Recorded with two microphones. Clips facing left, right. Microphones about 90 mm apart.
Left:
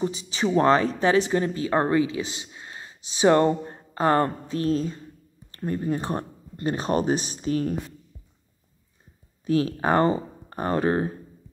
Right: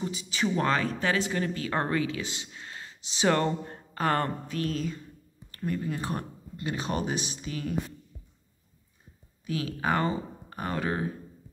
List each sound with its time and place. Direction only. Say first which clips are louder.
0.0 s speech: left 4 dB; 25° left (ahead or behind)
6.5 s speech: left 7 dB; 40° left (ahead or behind)
9.5 s speech: left 7 dB; 40° left (ahead or behind)